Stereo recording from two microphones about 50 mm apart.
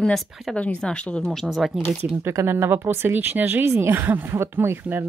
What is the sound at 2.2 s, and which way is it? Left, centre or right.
Speech, right.